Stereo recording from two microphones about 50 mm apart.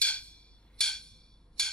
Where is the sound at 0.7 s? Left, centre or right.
Centre.